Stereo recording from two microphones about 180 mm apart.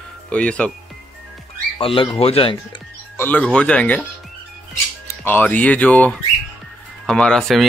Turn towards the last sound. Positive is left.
turn(degrees=0)  # may be behind; listen again after turning